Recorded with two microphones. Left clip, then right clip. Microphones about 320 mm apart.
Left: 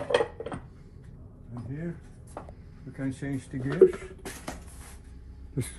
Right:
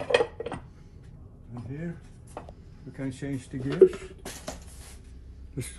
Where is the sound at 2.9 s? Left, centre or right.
Centre.